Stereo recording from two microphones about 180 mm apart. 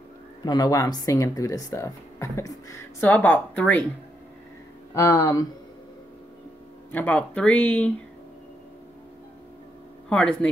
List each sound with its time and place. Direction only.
0.5 s speech: 20° left (ahead or behind)
4.9 s speech: 15° left (ahead or behind)
6.9 s speech: 10° left (ahead or behind)
10.0 s speech: 5° left (ahead or behind)